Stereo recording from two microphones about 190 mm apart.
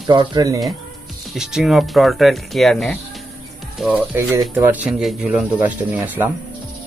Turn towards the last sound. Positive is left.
turn(degrees=-10)  # may be behind; listen again after turning